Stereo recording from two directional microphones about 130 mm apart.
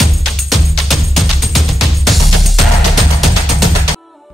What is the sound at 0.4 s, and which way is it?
Music, centre (ahead or behind).